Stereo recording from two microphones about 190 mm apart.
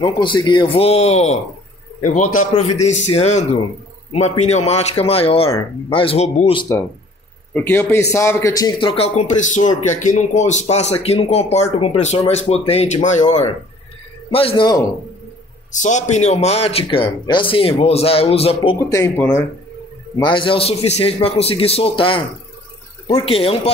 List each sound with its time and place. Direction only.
0.0 s a man's voice: 25° left (ahead or behind)
7.5 s speech: 10° left (ahead or behind); by 13.2 s 40° left (ahead or behind)
14.5 s a man's voice: 20° left (ahead or behind)
15.7 s speech: 40° left (ahead or behind)
18.9 s speech: 15° left (ahead or behind)
20.2 s a man's voice: 25° left (ahead or behind)